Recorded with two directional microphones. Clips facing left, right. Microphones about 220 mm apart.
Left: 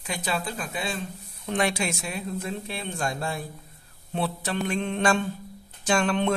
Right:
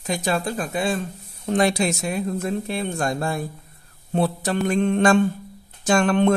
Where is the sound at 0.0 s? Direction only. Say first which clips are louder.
Right 6 dB; 45° right (ahead or behind).